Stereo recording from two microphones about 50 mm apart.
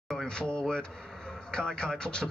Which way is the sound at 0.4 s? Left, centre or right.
Centre.